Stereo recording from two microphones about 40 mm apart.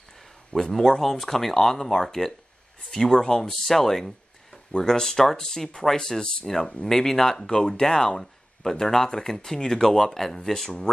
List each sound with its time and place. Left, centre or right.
0.6 s speech: centre
6.9 s speech: centre